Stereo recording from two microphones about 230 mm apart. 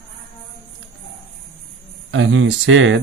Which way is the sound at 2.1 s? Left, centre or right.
Right.